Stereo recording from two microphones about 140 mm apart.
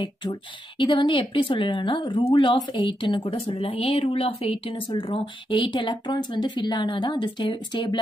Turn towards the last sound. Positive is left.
turn(degrees=35)  # may be behind; listen again after turning